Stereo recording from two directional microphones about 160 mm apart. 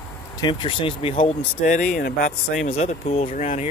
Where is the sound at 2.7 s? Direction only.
40° left (ahead or behind).